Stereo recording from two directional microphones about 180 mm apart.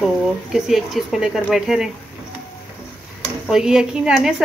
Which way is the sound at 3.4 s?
5° right (ahead or behind).